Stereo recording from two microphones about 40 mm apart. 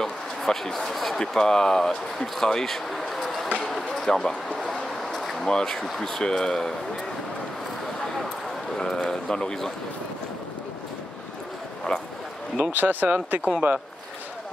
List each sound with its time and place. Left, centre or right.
0.4 s speech: centre
1.2 s speech: centre
3.6 s a sound: centre
5.5 s speech: centre
8.7 s speech: centre
11.9 s speech: left
12.7 s speech: right